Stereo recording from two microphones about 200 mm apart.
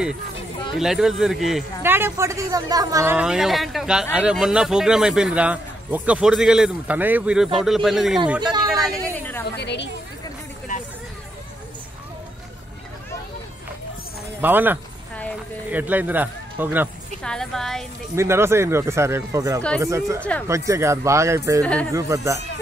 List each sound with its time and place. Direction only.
0.7 s speech: centre (ahead or behind)
9.6 s speech: 55° left (ahead or behind)
14.4 s speech: 10° right (ahead or behind)
17.2 s speech: 5° left (ahead or behind)
18.1 s speech: 15° right (ahead or behind)
20.2 s speech: 5° left (ahead or behind)
20.4 s speech: 15° right (ahead or behind)